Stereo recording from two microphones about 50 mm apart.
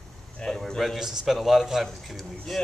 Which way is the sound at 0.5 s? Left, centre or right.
Centre.